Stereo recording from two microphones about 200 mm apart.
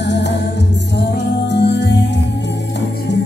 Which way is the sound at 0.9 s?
60° left (ahead or behind).